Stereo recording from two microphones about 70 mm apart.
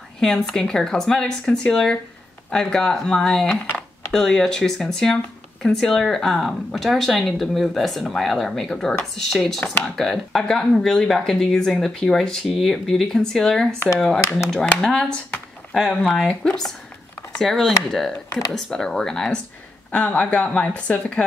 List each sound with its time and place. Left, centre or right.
0.2 s speech: centre